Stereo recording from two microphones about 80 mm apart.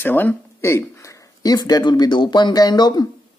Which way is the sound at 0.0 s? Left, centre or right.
Left.